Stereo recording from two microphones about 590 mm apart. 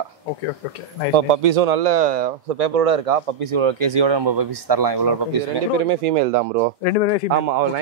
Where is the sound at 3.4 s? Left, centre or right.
Right.